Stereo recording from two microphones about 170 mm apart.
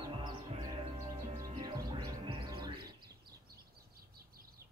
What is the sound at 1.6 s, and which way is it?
Music, 25° right (ahead or behind).